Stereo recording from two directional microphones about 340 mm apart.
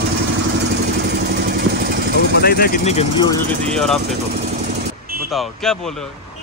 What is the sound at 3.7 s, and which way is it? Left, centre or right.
Speech, centre.